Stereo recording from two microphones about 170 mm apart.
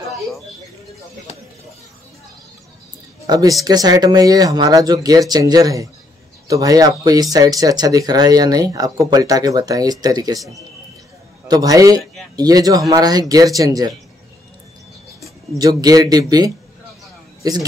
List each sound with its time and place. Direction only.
3.3 s speech: 20° right (ahead or behind)
11.4 s speech: 20° right (ahead or behind)
15.5 s speech: 20° right (ahead or behind)